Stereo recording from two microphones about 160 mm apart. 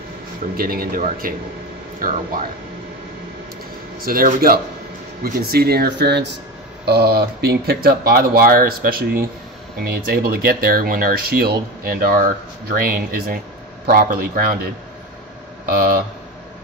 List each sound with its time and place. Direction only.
0.6 s speech: 65° right (ahead or behind)
4.0 s speech: 60° right (ahead or behind); by 6.3 s 90° right
6.9 s speech: 75° right (ahead or behind)
15.6 s speech: 65° right (ahead or behind)